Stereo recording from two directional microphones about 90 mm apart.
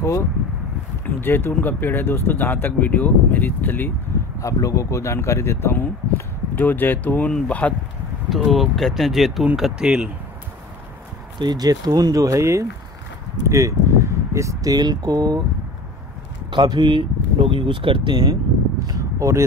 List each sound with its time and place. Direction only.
0.0 s speech: 30° left (ahead or behind)
4.4 s speech: 35° left (ahead or behind); by 7.7 s 15° left (ahead or behind)
8.3 s speech: centre (ahead or behind)
11.3 s speech: 50° right (ahead or behind)
16.4 s speech: 55° right (ahead or behind)
18.9 s speech: 35° right (ahead or behind)